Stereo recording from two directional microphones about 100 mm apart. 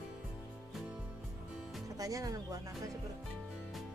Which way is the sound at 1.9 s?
35° right (ahead or behind).